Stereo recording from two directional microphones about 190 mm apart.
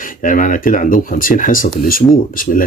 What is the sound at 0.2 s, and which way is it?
Speech, 45° left (ahead or behind).